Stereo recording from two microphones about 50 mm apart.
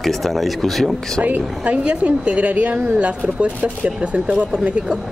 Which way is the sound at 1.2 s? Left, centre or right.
Right.